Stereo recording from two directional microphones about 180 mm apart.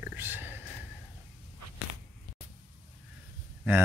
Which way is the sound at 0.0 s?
10° right (ahead or behind).